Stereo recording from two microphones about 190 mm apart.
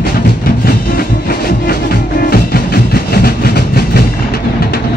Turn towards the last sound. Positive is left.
turn(degrees=55)  # may be behind; listen again after turning